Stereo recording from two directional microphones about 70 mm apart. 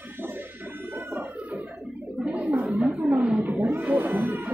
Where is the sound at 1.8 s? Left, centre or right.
Centre.